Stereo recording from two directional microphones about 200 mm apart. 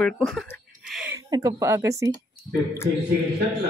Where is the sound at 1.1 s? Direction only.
20° right (ahead or behind).